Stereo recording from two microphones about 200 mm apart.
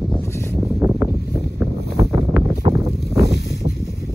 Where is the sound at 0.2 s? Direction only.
10° left (ahead or behind).